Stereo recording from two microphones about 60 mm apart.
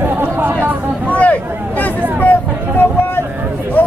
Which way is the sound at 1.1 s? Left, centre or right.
Left.